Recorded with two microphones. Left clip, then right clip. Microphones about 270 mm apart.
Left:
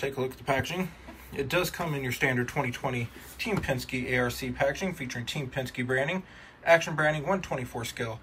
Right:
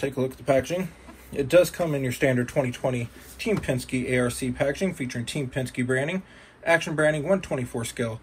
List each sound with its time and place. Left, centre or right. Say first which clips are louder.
0.0 s speech: right 4 dB; centre